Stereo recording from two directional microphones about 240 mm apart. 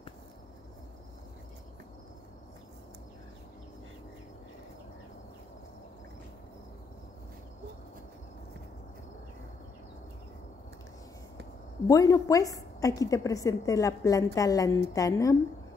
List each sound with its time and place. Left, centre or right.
11.9 s a woman's voice: centre